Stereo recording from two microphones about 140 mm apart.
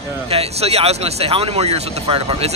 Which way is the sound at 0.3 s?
45° right (ahead or behind).